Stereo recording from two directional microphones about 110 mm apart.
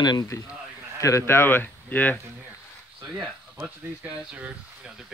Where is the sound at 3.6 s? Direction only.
15° right (ahead or behind).